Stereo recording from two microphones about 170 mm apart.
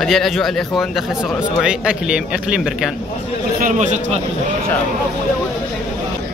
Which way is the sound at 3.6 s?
45° right (ahead or behind).